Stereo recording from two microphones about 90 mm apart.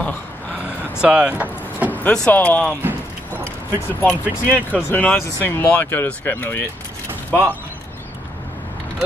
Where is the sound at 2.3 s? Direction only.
15° left (ahead or behind).